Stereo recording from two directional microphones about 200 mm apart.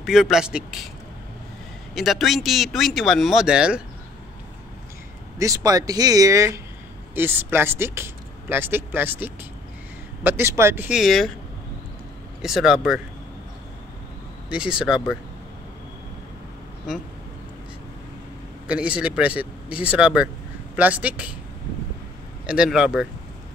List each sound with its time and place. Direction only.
0.0 s speech: centre (ahead or behind)
2.0 s speech: centre (ahead or behind)
5.4 s speech: 15° right (ahead or behind); by 11.3 s centre (ahead or behind)
12.4 s speech: centre (ahead or behind)
14.5 s speech: 5° right (ahead or behind)
18.7 s speech: 5° right (ahead or behind)
22.5 s speech: 5° right (ahead or behind)